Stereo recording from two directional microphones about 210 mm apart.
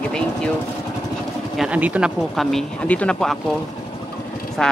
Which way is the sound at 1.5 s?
5° right (ahead or behind).